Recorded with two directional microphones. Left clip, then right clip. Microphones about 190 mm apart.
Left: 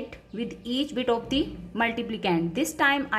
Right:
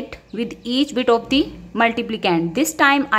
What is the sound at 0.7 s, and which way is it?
A woman's voice, 30° right (ahead or behind).